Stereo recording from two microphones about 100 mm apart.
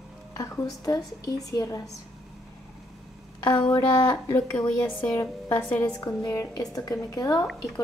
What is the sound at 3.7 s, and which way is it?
Speech, 40° left (ahead or behind).